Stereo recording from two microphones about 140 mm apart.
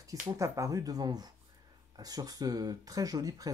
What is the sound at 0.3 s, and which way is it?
Speech, 25° right (ahead or behind).